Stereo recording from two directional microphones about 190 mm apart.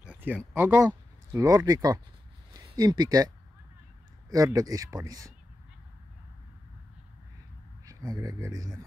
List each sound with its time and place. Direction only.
0.0 s speech: 10° right (ahead or behind)
4.3 s a man's voice: 20° right (ahead or behind)
7.8 s speech: 20° right (ahead or behind)